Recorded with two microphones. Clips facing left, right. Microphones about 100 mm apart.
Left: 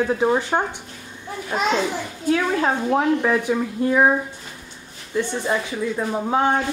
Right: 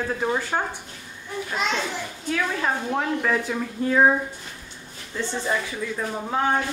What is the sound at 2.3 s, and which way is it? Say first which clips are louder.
Speech: left 5 dB; 30° left (ahead or behind).